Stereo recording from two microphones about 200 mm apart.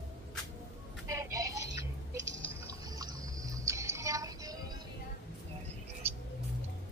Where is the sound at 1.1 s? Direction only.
15° right (ahead or behind).